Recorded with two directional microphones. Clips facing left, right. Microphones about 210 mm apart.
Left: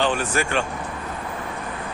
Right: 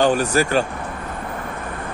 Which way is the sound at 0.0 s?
40° right (ahead or behind).